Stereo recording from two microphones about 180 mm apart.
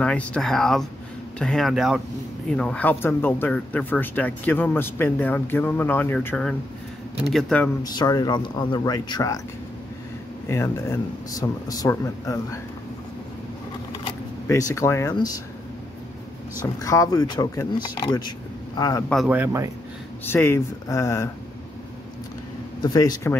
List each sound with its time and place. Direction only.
0.0 s speech: 5° left (ahead or behind)
7.8 s speech: 20° left (ahead or behind)
10.5 s speech: 15° left (ahead or behind)
14.5 s speech: 15° left (ahead or behind)
16.8 s speech: 20° left (ahead or behind)
19.2 s speech: 10° right (ahead or behind)
20.2 s speech: 15° left (ahead or behind)
22.8 s speech: 20° left (ahead or behind)